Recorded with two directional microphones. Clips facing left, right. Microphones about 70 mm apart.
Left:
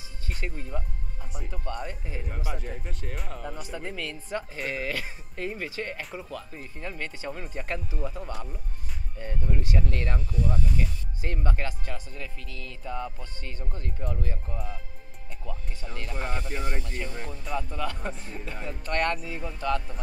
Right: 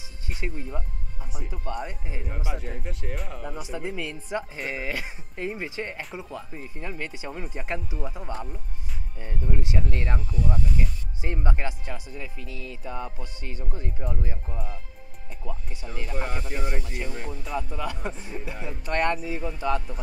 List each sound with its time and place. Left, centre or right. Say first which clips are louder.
0.3 s speech: right 2 dB; centre
2.5 s speech: right 2 dB; centre